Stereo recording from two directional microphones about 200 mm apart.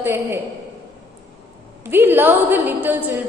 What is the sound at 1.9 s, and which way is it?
A woman's voice, 10° right (ahead or behind).